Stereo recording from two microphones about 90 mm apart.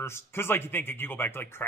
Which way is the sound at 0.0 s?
25° left (ahead or behind).